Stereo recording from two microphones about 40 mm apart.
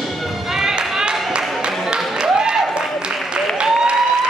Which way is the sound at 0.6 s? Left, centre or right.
Centre.